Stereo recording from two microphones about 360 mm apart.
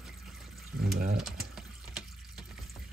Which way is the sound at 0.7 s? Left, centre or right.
Right.